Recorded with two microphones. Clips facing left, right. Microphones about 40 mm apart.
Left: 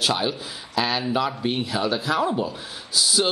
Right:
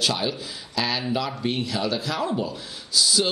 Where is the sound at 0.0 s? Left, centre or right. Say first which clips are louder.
Left 2 dB; centre.